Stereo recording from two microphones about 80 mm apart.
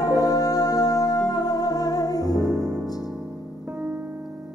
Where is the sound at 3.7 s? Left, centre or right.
Right.